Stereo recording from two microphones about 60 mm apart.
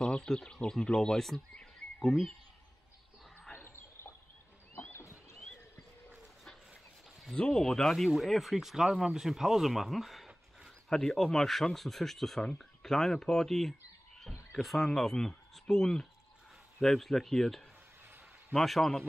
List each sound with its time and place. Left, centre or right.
0.0 s speech: centre
3.5 s a sound: left
4.7 s rowboat: left
6.7 s dog: centre
7.3 s speech: centre
7.6 s speech: centre